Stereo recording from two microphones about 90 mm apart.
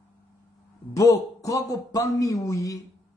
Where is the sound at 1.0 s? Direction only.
40° left (ahead or behind).